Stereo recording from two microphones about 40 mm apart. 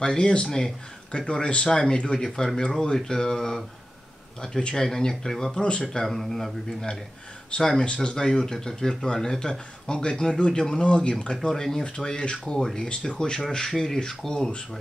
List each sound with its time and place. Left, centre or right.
0.0 s speech: left
5.6 s speech: left
5.9 s speech: centre; by 11.3 s left
11.4 s speech: centre
12.5 s speech: centre